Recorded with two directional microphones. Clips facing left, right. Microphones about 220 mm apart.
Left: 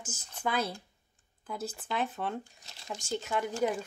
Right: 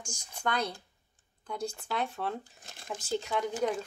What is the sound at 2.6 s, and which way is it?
Crumpling, 50° right (ahead or behind).